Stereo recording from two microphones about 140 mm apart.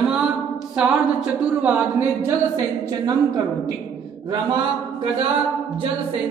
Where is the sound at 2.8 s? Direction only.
25° right (ahead or behind).